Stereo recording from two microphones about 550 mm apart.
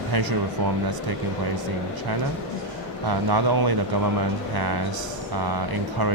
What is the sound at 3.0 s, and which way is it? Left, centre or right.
Speech, right.